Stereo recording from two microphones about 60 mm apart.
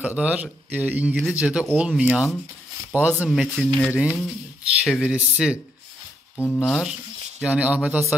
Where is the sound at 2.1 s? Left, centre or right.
Centre.